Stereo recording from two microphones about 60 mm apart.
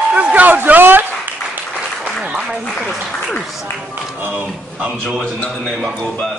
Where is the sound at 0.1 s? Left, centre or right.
Right.